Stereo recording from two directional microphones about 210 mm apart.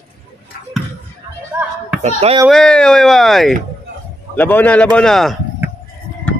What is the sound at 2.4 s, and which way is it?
A man's voice, 5° left (ahead or behind).